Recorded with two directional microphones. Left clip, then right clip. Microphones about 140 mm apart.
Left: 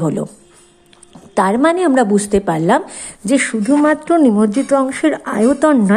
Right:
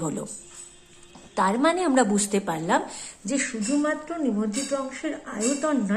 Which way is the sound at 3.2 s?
85° left.